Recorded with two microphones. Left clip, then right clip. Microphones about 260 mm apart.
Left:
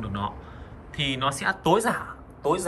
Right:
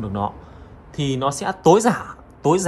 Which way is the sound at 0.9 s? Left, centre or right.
Centre.